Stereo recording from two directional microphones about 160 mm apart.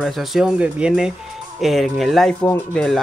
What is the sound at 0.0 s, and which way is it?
Speech, centre (ahead or behind).